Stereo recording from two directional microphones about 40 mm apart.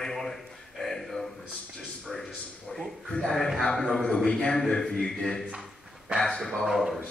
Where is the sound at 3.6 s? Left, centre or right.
Centre.